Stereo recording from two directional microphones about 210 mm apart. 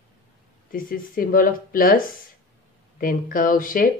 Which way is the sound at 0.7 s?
40° left (ahead or behind).